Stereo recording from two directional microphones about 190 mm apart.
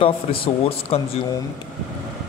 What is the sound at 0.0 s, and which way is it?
A man's voice, 30° left (ahead or behind).